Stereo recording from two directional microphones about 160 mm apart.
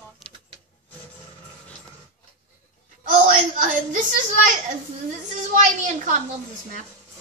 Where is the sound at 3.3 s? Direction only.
55° right (ahead or behind).